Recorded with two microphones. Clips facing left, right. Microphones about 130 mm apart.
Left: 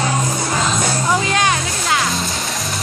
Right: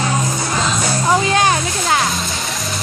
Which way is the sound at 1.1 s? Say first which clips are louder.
Right 4 dB; 30° right (ahead or behind).